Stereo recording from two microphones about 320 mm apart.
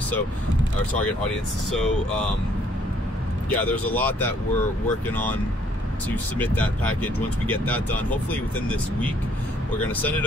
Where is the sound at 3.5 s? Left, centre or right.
Centre.